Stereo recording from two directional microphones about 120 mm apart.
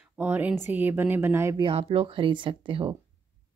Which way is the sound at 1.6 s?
55° right (ahead or behind).